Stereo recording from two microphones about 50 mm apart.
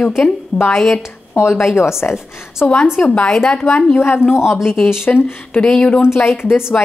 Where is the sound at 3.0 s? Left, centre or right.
Centre.